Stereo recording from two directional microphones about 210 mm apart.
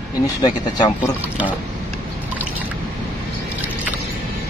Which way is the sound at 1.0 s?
5° right (ahead or behind).